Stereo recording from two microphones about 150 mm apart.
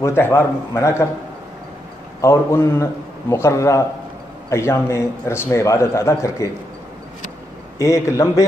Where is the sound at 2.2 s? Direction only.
20° left (ahead or behind).